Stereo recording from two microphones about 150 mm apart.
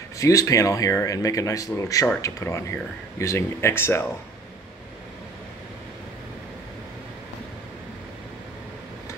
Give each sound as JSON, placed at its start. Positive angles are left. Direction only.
{"t": 0.2, "sound": "speech", "side_deg": 20}